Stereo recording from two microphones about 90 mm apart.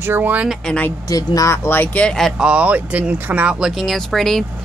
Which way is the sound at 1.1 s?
40° left (ahead or behind).